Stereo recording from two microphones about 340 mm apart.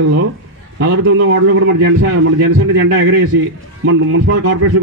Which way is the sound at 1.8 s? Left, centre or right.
Right.